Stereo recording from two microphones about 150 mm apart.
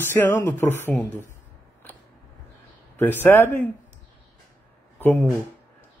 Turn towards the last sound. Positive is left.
turn(degrees=10)  # may be behind; listen again after turning